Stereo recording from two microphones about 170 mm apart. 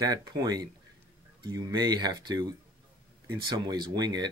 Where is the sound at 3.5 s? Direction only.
25° right (ahead or behind).